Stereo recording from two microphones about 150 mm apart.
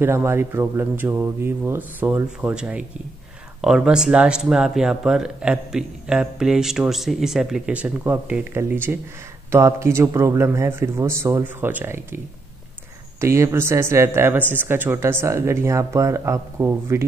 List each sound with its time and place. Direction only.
0.0 s speech: 15° right (ahead or behind)
13.2 s speech: 20° right (ahead or behind)